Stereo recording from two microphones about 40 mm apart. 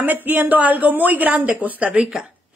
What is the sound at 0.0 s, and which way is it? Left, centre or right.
A woman's voice, right.